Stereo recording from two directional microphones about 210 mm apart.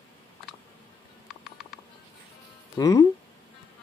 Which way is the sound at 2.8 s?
15° left (ahead or behind).